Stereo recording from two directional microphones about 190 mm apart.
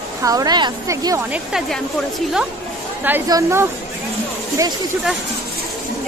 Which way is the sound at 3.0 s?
15° right (ahead or behind).